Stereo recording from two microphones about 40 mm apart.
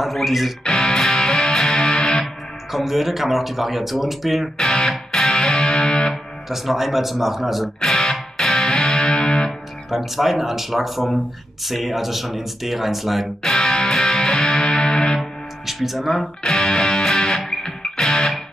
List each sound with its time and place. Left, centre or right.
0.0 s speech: centre
0.7 s music: centre
2.7 s speech: centre
4.6 s music: centre
6.5 s speech: centre
7.8 s music: centre
9.8 s speech: centre
13.4 s music: centre
15.6 s speech: centre
16.4 s music: centre